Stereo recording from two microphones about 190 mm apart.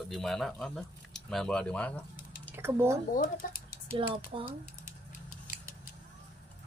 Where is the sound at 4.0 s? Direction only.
30° right (ahead or behind).